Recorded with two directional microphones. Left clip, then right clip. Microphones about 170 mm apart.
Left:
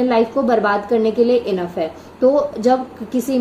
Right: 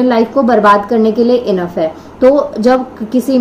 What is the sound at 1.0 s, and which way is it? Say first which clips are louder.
Speech: right 4 dB; 50° right (ahead or behind).